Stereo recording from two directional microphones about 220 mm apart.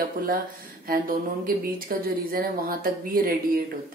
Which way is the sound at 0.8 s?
40° right (ahead or behind).